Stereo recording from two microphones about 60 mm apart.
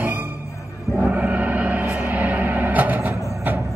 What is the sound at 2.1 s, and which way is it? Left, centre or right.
Music, right.